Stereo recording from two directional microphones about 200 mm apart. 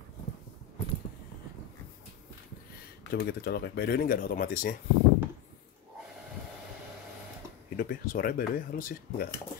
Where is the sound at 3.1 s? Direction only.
55° left (ahead or behind).